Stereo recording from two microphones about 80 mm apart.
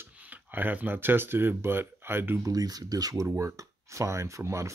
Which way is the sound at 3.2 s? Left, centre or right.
Right.